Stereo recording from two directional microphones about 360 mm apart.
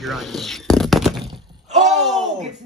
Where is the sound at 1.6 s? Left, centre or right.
Centre.